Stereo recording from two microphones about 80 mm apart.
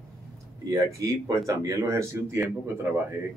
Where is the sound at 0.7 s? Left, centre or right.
Right.